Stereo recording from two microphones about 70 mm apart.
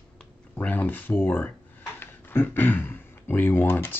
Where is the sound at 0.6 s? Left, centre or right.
Left.